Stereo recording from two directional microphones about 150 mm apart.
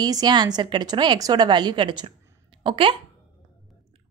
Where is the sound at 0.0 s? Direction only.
25° right (ahead or behind).